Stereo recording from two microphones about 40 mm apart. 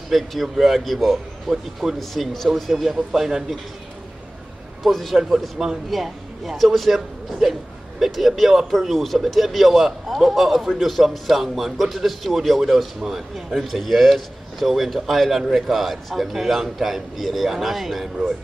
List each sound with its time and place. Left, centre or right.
0.1 s a man's voice: centre
4.8 s a man's voice: centre